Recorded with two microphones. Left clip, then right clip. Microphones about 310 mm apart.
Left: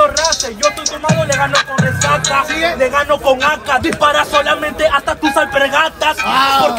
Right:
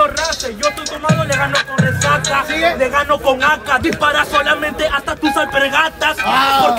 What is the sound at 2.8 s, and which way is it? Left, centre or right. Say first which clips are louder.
A man's voice: left 1 dB; centre.